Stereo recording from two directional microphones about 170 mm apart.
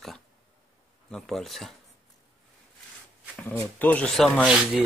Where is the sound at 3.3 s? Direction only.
10° left (ahead or behind).